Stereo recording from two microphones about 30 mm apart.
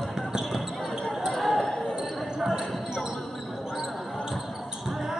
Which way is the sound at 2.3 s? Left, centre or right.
Right.